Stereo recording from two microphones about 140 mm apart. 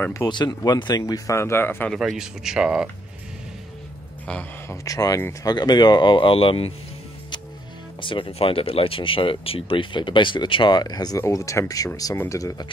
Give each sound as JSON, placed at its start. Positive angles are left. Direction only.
{"t": 0.0, "sound": "speech", "side_deg": 20}
{"t": 1.9, "sound": "speech", "side_deg": 0}
{"t": 4.3, "sound": "speech", "side_deg": 10}
{"t": 4.8, "sound": "speech", "side_deg": 25}
{"t": 8.0, "sound": "speech", "side_deg": 35}